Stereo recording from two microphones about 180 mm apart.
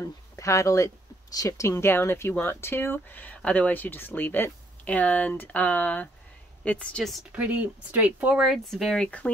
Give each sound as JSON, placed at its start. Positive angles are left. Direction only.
{"t": 0.0, "sound": "speech", "side_deg": 15}